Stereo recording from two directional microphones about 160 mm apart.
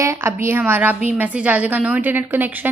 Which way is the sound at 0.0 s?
15° right (ahead or behind).